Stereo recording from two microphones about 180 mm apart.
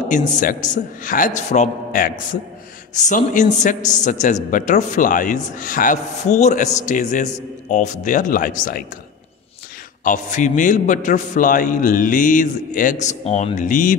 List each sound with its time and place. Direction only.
0.1 s a man's voice: 45° left (ahead or behind)
10.0 s a man's voice: 45° left (ahead or behind)